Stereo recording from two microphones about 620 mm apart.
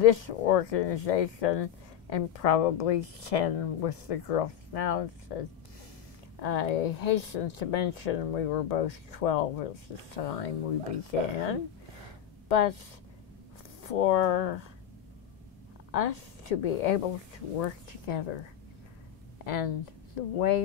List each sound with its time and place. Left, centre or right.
0.0 s speech: left
6.4 s speech: left
13.8 s speech: left
15.9 s speech: left
19.4 s speech: left